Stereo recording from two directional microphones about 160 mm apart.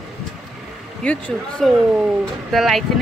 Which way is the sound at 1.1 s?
10° left (ahead or behind).